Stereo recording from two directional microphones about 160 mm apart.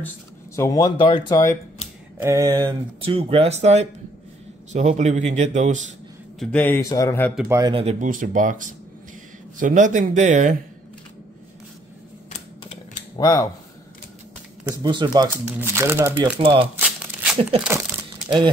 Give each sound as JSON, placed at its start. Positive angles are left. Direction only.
{"t": 0.6, "sound": "speech", "side_deg": 20}
{"t": 2.1, "sound": "a man's voice", "side_deg": -20}
{"t": 6.4, "sound": "speech", "side_deg": 10}
{"t": 7.4, "sound": "speech", "side_deg": -20}
{"t": 7.7, "sound": "speech", "side_deg": -35}
{"t": 8.0, "sound": "a man's voice", "side_deg": -55}
{"t": 13.2, "sound": "speech", "side_deg": 25}
{"t": 14.6, "sound": "speech", "side_deg": -20}
{"t": 15.4, "sound": "speech", "side_deg": -15}
{"t": 16.3, "sound": "speech", "side_deg": -35}
{"t": 17.0, "sound": "a sound", "side_deg": -10}
{"t": 17.6, "sound": "crumpling", "side_deg": -10}